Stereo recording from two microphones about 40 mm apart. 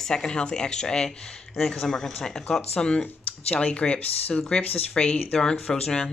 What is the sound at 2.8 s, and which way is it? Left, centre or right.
Speech, left.